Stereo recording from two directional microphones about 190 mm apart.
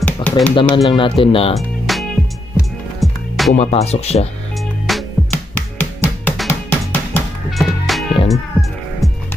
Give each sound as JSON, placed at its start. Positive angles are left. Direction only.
{"t": 0.0, "sound": "a sound", "side_deg": 5}
{"t": 0.8, "sound": "speech", "side_deg": 25}
{"t": 1.6, "sound": "music", "side_deg": 0}
{"t": 3.5, "sound": "speech", "side_deg": 35}
{"t": 4.8, "sound": "music", "side_deg": 5}